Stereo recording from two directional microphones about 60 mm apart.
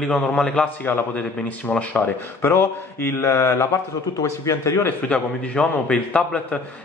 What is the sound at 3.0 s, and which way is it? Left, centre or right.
Mantra, left.